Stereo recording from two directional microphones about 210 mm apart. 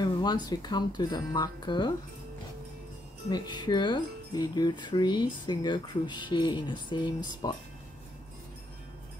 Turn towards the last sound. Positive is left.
turn(degrees=20)  # may be behind; listen again after turning